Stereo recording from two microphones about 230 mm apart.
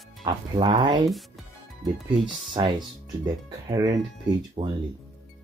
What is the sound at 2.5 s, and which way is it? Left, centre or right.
Speech, centre.